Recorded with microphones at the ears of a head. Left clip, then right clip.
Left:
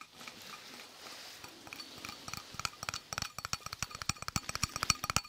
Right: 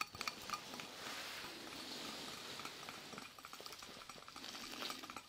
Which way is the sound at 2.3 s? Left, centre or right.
Left.